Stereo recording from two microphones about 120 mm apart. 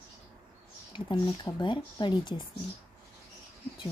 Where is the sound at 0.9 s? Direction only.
40° left (ahead or behind).